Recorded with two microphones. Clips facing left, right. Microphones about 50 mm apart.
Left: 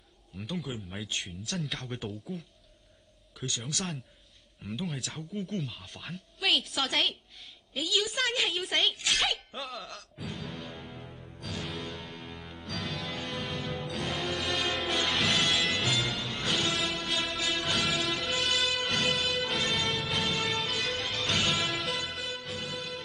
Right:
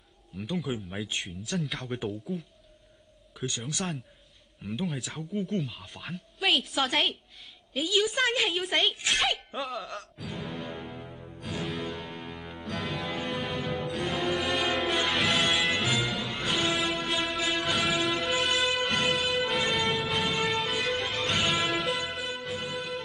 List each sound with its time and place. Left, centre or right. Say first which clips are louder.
0.4 s a woman's voice: right 4 dB; centre
3.4 s speech: right 4 dB; centre
4.8 s a woman's voice: right 3 dB; centre
8.9 s speech: right 2 dB; centre
9.2 s a woman's voice: right 3 dB; centre
10.3 s music: right 6 dB; centre